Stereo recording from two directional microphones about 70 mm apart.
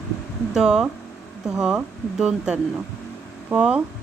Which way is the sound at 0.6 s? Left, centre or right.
Centre.